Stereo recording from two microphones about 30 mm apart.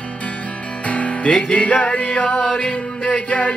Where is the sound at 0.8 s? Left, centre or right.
Left.